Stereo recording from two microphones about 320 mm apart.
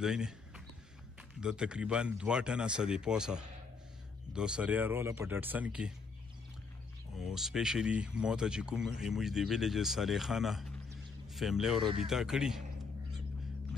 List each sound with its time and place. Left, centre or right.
0.0 s speech: centre
1.4 s speech: centre
7.2 s speech: centre